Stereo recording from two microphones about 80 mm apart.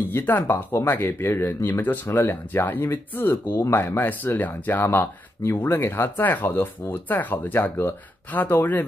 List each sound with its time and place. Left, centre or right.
0.1 s speech: left